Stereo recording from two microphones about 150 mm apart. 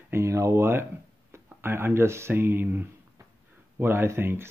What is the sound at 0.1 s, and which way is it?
Speech, 20° right (ahead or behind).